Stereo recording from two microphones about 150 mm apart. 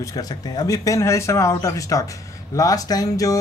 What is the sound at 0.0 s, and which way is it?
Speech, 25° left (ahead or behind).